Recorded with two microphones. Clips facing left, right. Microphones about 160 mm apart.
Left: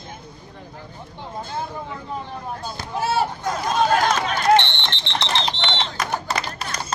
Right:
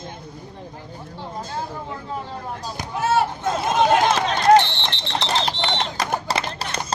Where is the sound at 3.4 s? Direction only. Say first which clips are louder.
Right 2 dB; 25° right (ahead or behind).